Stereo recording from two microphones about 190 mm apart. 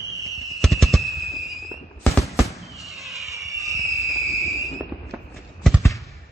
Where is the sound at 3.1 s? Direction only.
Centre (ahead or behind).